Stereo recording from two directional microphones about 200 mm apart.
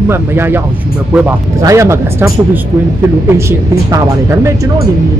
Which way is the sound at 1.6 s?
15° right (ahead or behind).